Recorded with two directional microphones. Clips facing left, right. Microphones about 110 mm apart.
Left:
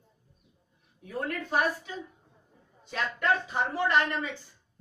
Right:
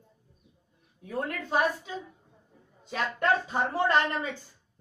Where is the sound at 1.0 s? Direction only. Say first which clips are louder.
Right 1 dB; 20° right (ahead or behind).